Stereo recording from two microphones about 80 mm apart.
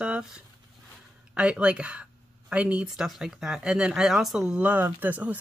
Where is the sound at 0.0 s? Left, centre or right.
Centre.